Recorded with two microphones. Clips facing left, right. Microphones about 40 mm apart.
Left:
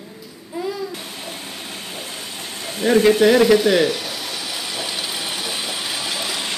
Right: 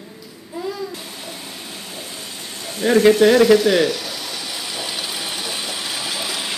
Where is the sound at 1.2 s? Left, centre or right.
Centre.